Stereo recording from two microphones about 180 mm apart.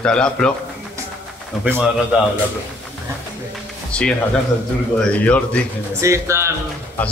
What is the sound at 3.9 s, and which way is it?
Speech, 5° left (ahead or behind).